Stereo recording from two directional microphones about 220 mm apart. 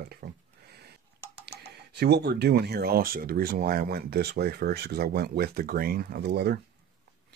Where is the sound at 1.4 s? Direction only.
50° right (ahead or behind).